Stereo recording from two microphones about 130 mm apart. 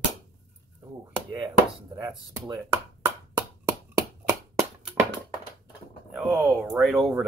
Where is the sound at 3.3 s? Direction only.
25° right (ahead or behind).